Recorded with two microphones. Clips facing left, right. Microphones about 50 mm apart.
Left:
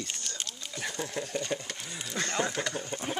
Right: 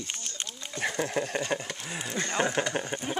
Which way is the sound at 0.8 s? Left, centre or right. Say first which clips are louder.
Right 6 dB; right.